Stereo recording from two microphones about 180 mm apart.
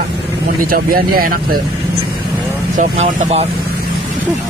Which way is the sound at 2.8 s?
40° right (ahead or behind).